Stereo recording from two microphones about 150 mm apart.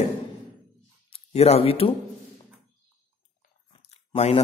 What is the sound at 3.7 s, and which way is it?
Chewing, 45° left (ahead or behind).